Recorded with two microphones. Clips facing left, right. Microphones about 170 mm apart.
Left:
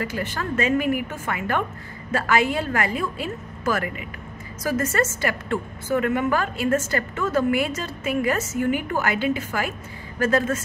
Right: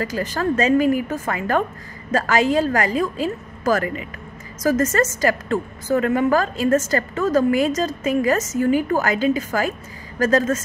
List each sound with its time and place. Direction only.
0.0 s a woman's voice: 40° right (ahead or behind)
4.6 s a woman's voice: 40° right (ahead or behind)